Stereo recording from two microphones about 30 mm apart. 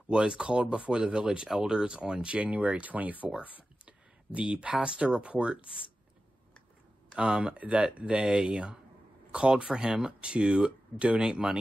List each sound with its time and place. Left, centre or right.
0.1 s speech: right
0.9 s speech: right
2.2 s speech: right
2.6 s speech: right
3.8 s a sound: right
5.1 s speech: right
7.2 s speech: right
7.5 s speech: right
8.2 s speech: right
9.9 s speech: right
11.1 s speech: right